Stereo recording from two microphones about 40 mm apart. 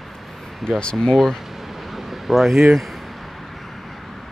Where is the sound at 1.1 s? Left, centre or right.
Centre.